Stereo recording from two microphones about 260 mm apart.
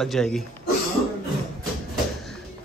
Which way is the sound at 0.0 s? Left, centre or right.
Centre.